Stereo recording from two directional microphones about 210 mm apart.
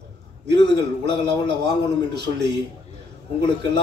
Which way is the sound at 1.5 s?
55° right (ahead or behind).